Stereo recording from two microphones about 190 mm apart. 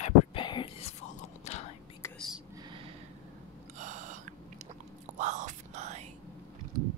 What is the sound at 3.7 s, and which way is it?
Gasp, 40° right (ahead or behind).